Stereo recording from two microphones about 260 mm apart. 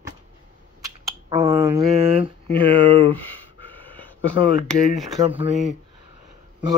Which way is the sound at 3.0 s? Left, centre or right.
Left.